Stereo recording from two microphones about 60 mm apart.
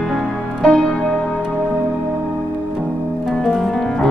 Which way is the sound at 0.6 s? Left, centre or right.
Centre.